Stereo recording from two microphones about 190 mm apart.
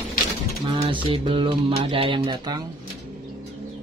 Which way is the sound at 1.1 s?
25° right (ahead or behind).